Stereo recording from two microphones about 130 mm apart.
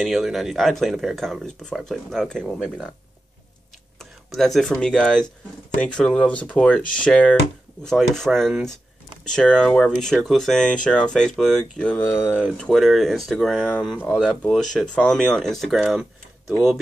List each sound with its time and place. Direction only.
0.0 s speech: centre (ahead or behind)
4.0 s speech: centre (ahead or behind)
12.0 s speech: 20° left (ahead or behind)
12.5 s speech: 5° left (ahead or behind)